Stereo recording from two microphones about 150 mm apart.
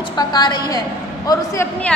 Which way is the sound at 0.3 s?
25° left (ahead or behind).